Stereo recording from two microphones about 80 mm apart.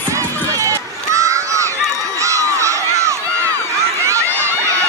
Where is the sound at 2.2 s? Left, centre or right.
Right.